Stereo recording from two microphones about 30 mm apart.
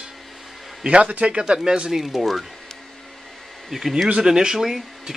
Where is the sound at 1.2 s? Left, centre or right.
Right.